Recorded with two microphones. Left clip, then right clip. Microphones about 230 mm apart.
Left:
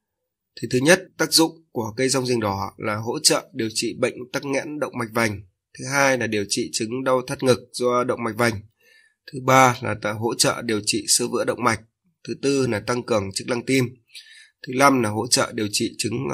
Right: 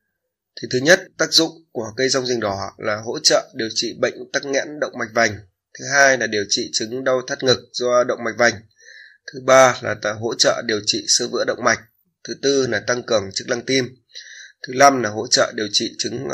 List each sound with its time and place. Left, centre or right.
0.6 s speech: left